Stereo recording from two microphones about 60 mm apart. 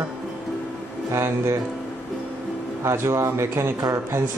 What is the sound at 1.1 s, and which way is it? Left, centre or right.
Speech, right.